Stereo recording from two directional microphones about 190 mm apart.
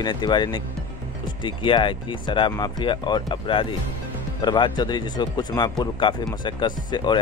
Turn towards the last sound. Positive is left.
turn(degrees=25)  # may be behind; listen again after turning